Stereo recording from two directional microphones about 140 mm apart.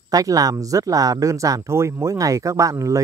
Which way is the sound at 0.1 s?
25° right (ahead or behind).